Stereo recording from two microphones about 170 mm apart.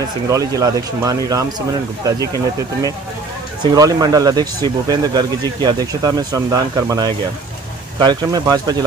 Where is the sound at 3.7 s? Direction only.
20° right (ahead or behind).